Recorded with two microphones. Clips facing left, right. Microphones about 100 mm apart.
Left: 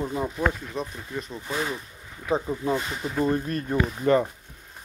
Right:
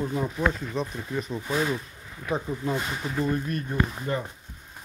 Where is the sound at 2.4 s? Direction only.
20° left (ahead or behind).